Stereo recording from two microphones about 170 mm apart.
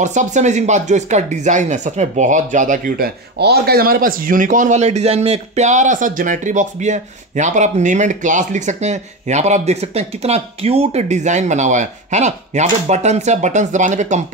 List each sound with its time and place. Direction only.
0.0 s speech: 45° right (ahead or behind)